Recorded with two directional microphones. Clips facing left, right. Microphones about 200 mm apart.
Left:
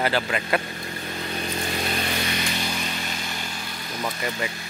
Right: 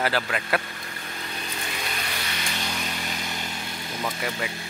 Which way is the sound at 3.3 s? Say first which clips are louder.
Even; 20° right (ahead or behind).